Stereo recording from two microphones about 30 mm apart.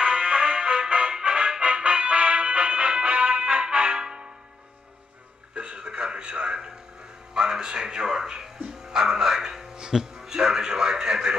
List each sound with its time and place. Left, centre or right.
0.0 s music: right
3.6 s music: right
5.5 s a sound: right
8.5 s music: right